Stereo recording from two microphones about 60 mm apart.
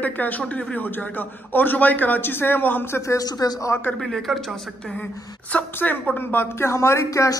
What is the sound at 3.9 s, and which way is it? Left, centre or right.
Speech, centre.